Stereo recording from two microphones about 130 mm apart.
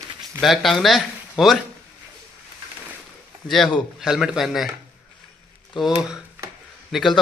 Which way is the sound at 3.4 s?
Centre (ahead or behind).